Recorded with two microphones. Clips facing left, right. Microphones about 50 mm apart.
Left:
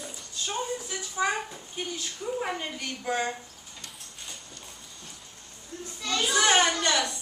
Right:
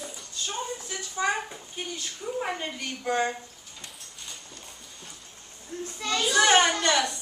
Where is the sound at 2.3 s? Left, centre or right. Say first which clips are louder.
Right 2 dB; centre.